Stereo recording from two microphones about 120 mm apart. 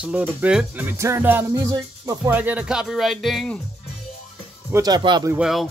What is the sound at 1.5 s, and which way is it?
Speech, 30° right (ahead or behind).